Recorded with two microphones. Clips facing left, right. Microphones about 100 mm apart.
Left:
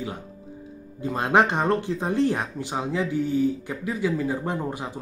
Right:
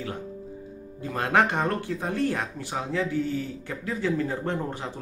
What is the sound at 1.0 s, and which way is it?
Speech, 20° left (ahead or behind).